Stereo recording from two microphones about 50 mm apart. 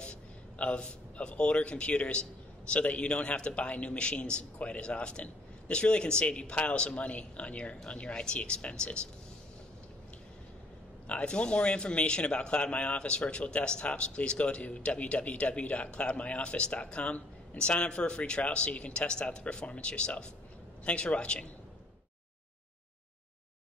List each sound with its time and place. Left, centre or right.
0.0 s a man's voice: left
11.1 s speech: left